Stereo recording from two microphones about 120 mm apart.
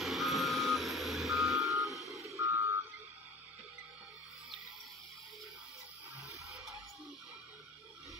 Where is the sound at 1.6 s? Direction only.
25° right (ahead or behind).